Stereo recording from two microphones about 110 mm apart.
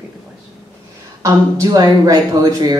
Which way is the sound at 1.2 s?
30° right (ahead or behind).